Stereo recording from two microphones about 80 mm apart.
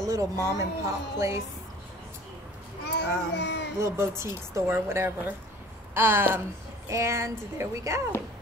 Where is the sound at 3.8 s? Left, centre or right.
Right.